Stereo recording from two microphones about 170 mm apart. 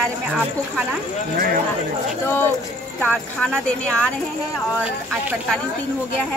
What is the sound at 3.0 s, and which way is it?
Speech, 5° left (ahead or behind).